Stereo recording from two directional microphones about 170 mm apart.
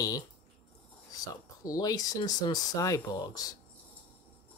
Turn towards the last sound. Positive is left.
turn(degrees=20)  # may be behind; listen again after turning